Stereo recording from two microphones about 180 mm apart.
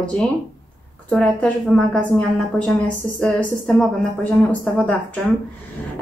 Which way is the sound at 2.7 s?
5° left (ahead or behind).